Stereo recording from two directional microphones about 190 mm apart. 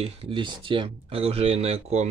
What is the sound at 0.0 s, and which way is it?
Speech, 25° right (ahead or behind).